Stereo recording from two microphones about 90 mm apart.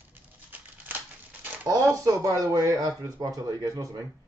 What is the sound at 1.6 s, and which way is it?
A man's voice, 35° right (ahead or behind).